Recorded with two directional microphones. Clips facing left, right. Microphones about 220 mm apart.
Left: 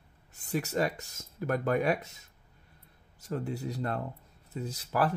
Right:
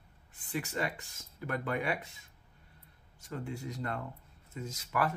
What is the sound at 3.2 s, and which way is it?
Speech, 40° left (ahead or behind).